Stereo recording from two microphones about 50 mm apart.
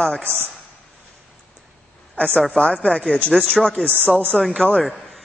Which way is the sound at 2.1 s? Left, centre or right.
Centre.